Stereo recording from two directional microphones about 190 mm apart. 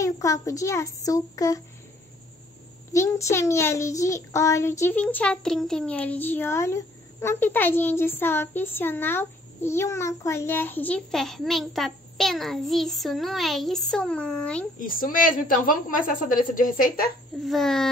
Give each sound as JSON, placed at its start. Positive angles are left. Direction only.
{"t": 0.0, "sound": "a child's voice", "side_deg": 15}
{"t": 2.9, "sound": "a child's voice", "side_deg": 15}
{"t": 14.8, "sound": "a woman's voice", "side_deg": 45}
{"t": 17.5, "sound": "speech", "side_deg": 0}